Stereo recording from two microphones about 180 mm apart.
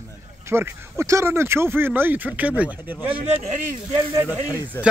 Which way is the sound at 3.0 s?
30° right (ahead or behind).